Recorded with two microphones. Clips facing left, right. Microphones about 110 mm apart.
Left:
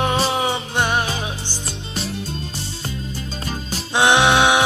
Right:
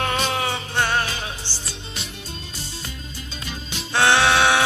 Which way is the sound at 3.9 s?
15° left (ahead or behind).